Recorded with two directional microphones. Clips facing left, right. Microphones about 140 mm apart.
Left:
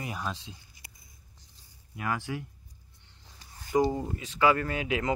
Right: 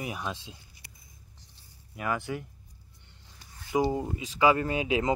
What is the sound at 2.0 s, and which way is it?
Speech, centre (ahead or behind).